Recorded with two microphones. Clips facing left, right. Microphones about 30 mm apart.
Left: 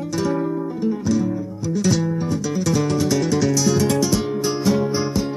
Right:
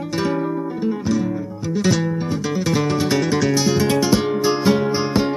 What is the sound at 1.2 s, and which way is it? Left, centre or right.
Music, right.